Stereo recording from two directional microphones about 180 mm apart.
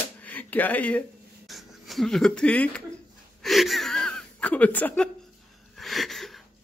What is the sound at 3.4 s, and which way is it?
Wheeze, centre (ahead or behind).